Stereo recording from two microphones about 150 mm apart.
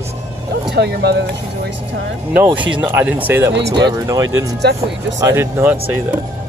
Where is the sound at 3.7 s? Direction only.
25° right (ahead or behind).